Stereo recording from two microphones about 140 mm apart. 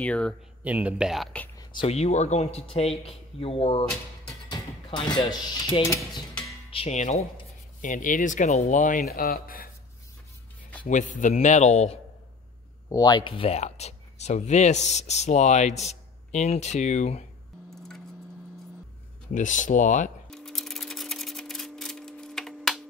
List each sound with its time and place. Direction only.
0.0 s speech: 10° left (ahead or behind)
0.7 s speech: 10° right (ahead or behind)
1.6 s a sound: 35° left (ahead or behind)
1.9 s speech: 50° left (ahead or behind)
4.5 s speech: 30° left (ahead or behind)
7.0 s speech: 55° left (ahead or behind)
7.8 s speech: 70° left (ahead or behind)
9.1 s speech: 90° left
10.9 s speech: 65° left (ahead or behind)
12.9 s speech: 30° left (ahead or behind); by 17.3 s 55° left (ahead or behind)
17.6 s a sound: centre (ahead or behind)
19.3 s speech: 65° left (ahead or behind)
20.2 s a sound: 5° left (ahead or behind)